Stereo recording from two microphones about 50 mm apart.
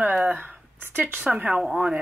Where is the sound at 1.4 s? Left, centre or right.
Centre.